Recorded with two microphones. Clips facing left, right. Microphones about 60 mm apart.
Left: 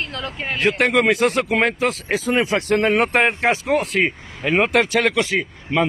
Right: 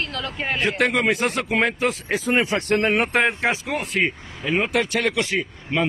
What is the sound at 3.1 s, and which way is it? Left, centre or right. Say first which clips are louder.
Speech: left 3 dB; left.